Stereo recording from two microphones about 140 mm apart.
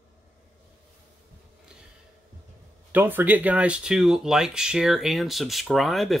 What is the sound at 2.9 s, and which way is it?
Speech, 15° right (ahead or behind).